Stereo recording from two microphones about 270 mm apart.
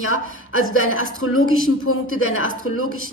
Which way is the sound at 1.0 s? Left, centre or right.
Left.